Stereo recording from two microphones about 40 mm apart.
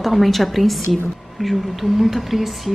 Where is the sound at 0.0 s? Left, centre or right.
Centre.